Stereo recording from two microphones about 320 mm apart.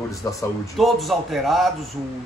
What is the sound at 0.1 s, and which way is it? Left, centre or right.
A man's voice, centre.